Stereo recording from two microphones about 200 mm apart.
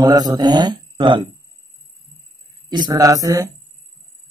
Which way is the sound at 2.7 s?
20° right (ahead or behind).